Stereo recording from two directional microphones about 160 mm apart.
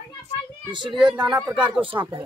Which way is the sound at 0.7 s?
30° right (ahead or behind).